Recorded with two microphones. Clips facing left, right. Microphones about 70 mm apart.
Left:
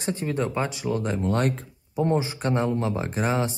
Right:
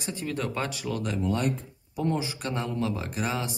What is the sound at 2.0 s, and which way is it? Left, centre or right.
Speech, left.